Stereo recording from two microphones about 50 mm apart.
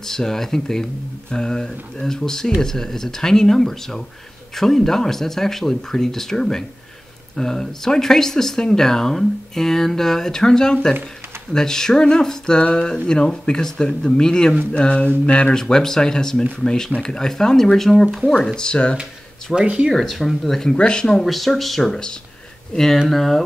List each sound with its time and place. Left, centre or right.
0.0 s speech: centre
19.5 s speech: right
19.9 s speech: centre
20.7 s speech: centre
21.2 s speech: centre